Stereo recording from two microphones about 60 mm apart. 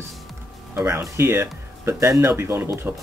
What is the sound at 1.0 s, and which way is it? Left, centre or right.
Speech, right.